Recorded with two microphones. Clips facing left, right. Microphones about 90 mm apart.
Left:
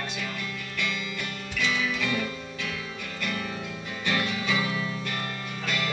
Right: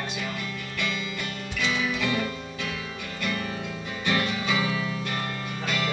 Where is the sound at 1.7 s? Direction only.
15° right (ahead or behind).